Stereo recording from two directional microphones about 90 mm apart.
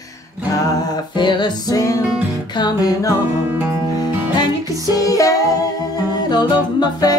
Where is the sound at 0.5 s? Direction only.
40° left (ahead or behind).